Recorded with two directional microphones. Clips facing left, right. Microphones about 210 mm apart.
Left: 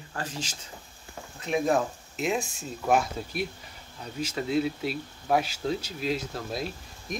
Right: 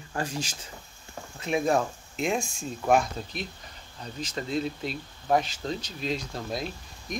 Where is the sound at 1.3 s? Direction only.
Centre (ahead or behind).